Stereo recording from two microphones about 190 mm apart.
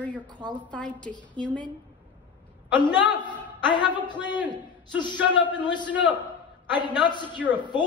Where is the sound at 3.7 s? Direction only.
25° left (ahead or behind).